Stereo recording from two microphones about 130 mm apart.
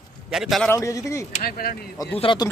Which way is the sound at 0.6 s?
25° left (ahead or behind).